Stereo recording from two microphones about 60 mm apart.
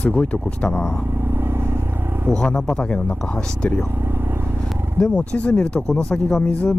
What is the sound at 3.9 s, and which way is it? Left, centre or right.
Vehicle, right.